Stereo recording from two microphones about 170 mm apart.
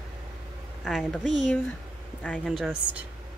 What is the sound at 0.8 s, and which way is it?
Speech, centre (ahead or behind).